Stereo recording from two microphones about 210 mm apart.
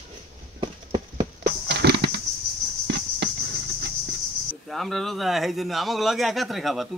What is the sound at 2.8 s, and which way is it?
Insect, 55° right (ahead or behind).